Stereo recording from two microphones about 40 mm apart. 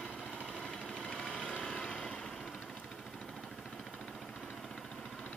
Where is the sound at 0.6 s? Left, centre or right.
Centre.